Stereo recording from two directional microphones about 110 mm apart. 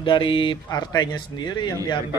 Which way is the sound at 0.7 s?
40° left (ahead or behind).